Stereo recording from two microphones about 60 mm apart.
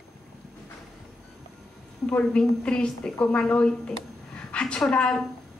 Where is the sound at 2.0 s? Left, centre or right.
Left.